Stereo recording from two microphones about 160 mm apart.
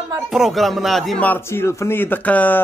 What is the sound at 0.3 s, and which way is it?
A man's voice, centre (ahead or behind).